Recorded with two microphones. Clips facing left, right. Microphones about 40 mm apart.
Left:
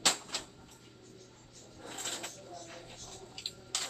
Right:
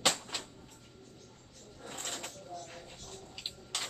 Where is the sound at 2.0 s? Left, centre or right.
Centre.